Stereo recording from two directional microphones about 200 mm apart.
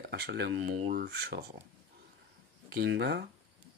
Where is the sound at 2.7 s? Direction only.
55° right (ahead or behind).